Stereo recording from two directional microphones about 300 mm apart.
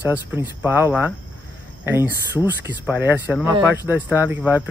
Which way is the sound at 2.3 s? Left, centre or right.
Centre.